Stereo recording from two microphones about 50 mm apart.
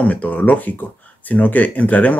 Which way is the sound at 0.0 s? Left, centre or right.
Left.